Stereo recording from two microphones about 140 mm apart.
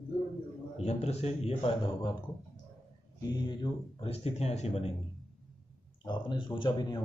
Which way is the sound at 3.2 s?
30° left (ahead or behind).